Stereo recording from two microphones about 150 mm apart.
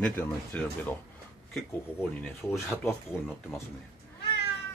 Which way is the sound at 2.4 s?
15° left (ahead or behind).